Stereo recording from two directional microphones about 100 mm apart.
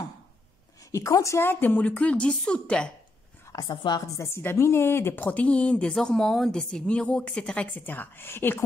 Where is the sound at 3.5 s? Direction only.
45° left (ahead or behind).